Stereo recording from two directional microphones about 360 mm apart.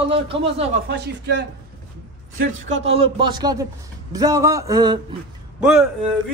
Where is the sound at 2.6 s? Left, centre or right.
Centre.